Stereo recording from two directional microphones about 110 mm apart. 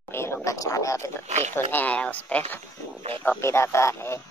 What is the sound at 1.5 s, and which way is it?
Speech, 20° left (ahead or behind).